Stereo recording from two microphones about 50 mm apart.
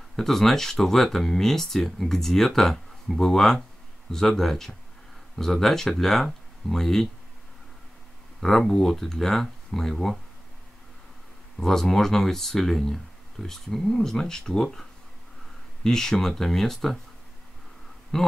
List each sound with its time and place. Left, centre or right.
0.1 s speech: centre
8.4 s speech: centre
11.6 s speech: centre
18.1 s speech: centre